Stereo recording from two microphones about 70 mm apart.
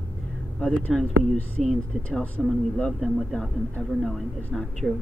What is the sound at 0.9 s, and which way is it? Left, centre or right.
Speech, centre.